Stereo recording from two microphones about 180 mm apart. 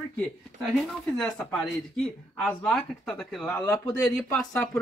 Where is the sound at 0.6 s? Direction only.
5° left (ahead or behind).